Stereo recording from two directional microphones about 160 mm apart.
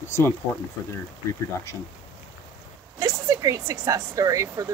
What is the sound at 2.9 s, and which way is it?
Speech, 20° right (ahead or behind).